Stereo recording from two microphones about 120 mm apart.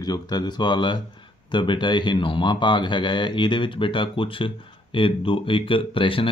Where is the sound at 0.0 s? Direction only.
35° left (ahead or behind).